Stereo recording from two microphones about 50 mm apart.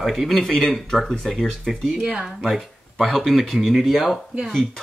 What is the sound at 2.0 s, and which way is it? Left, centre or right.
Speech, right.